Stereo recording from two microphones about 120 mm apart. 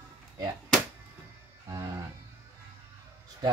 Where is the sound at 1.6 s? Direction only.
30° right (ahead or behind).